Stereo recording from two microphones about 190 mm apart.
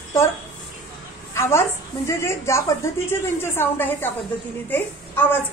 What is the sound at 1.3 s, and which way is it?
A woman's voice, 15° left (ahead or behind).